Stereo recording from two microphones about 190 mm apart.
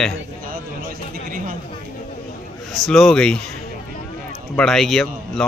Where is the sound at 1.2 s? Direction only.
45° right (ahead or behind).